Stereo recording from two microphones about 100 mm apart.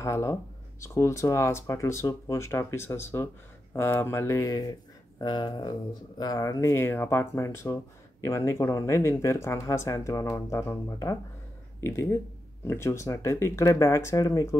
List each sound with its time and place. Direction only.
0.0 s speech: 30° left (ahead or behind)
5.2 s speech: 50° left (ahead or behind)